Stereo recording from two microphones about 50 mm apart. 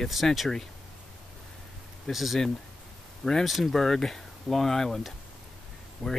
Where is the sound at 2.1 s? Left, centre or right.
Centre.